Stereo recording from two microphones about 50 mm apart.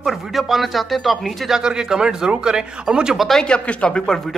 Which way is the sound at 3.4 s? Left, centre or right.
Centre.